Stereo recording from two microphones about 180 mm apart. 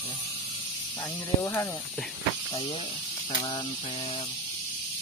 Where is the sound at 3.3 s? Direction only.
25° left (ahead or behind).